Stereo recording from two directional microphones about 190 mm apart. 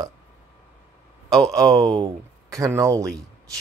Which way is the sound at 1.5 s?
20° right (ahead or behind).